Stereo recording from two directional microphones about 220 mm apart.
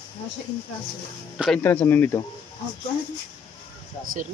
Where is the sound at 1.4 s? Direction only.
5° left (ahead or behind).